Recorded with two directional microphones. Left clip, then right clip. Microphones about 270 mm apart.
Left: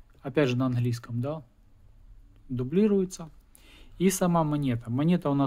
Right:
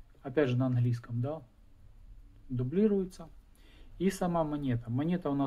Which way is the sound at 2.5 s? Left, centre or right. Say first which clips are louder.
Left 4 dB; left.